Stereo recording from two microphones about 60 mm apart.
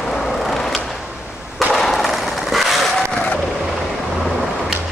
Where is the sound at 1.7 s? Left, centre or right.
Centre.